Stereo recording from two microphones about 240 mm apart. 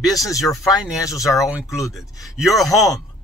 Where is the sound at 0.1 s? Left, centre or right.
Centre.